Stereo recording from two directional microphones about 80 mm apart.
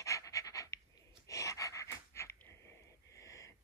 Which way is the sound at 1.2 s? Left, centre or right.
Left.